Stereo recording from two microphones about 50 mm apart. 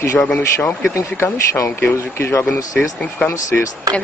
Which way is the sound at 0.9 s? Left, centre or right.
Left.